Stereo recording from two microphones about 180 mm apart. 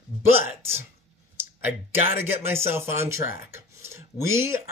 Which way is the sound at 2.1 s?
10° right (ahead or behind).